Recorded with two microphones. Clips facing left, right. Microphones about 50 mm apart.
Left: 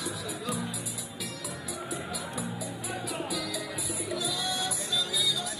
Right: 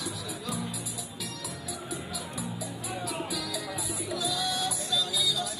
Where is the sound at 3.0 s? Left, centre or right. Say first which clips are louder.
Even; centre.